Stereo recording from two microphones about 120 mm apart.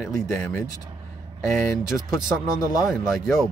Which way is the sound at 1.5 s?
Centre (ahead or behind).